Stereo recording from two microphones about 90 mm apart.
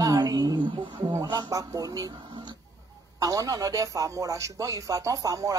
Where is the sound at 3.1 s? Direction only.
40° right (ahead or behind).